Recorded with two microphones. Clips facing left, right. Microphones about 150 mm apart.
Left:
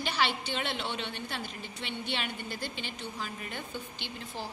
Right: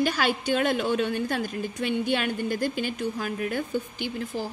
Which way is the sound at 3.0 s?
80° right.